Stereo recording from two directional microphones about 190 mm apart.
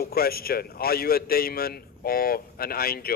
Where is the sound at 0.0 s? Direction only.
55° left (ahead or behind).